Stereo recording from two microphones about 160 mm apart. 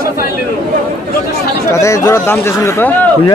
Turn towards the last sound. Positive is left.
turn(degrees=15)  # may be behind; listen again after turning